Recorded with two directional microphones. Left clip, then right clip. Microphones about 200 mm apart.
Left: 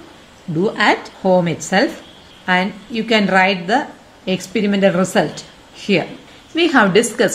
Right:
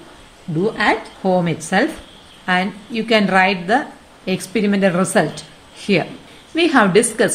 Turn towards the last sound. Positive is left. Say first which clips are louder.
# left 1 dB
turn(degrees=0)  # may be behind; listen again after turning